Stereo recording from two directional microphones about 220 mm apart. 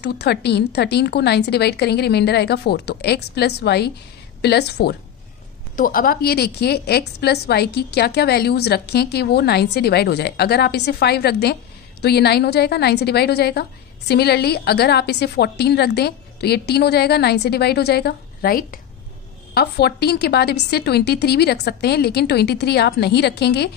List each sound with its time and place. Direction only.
0.0 s a woman's voice: 50° left (ahead or behind)